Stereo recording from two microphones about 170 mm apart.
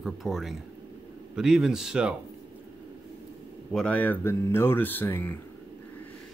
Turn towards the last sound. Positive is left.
turn(degrees=10)  # may be behind; listen again after turning